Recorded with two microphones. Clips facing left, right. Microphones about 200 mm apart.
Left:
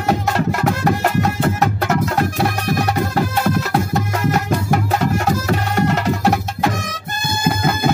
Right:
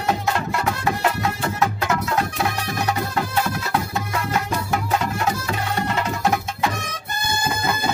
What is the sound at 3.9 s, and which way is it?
Music, 50° left (ahead or behind).